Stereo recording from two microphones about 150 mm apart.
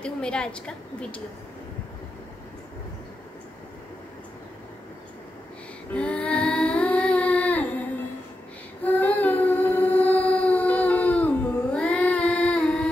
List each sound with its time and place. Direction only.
0.0 s a woman's voice: 5° left (ahead or behind)
5.9 s child singing: 10° left (ahead or behind)
8.8 s singing: 10° left (ahead or behind)